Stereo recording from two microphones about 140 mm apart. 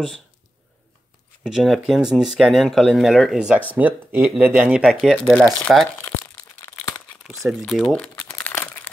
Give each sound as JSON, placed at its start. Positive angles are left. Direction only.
{"t": 1.4, "sound": "speech", "side_deg": 0}
{"t": 5.9, "sound": "crunch", "side_deg": 15}
{"t": 7.6, "sound": "crumpling", "side_deg": 5}